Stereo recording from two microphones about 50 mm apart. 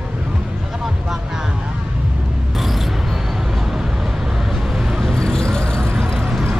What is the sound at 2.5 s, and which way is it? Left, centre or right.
Vehicle, centre.